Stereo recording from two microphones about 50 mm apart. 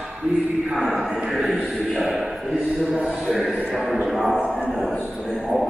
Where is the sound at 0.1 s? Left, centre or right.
Right.